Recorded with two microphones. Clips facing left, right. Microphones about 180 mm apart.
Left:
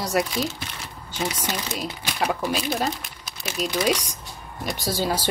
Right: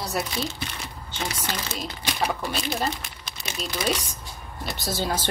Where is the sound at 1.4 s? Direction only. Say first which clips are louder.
Left 3 dB; 10° left (ahead or behind).